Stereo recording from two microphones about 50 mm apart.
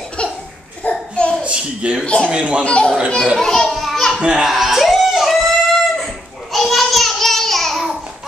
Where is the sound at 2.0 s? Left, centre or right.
Left.